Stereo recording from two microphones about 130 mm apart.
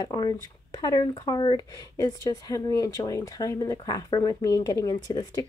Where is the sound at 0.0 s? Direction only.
30° left (ahead or behind).